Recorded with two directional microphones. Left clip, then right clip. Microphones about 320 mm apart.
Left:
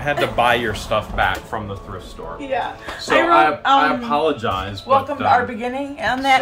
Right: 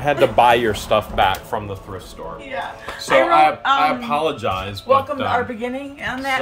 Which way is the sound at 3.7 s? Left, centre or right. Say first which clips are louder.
Left 2 dB; right.